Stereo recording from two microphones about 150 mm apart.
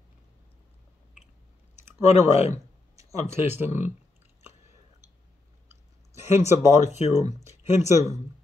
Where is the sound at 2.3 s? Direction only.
45° left (ahead or behind).